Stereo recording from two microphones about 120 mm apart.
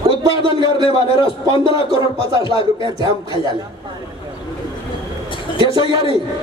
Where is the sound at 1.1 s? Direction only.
45° left (ahead or behind).